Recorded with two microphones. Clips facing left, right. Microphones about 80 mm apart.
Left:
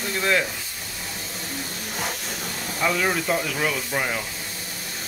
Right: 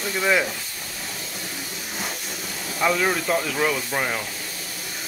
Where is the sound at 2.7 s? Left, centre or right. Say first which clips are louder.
Right 2 dB; centre.